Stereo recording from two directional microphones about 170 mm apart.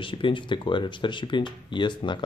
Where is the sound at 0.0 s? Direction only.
30° left (ahead or behind).